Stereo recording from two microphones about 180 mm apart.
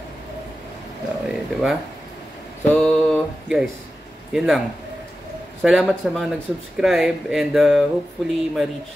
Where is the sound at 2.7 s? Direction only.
5° left (ahead or behind).